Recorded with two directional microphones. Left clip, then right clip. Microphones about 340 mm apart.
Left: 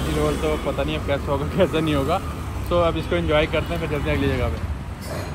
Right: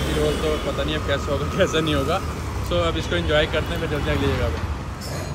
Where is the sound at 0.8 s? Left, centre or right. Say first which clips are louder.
Even; centre.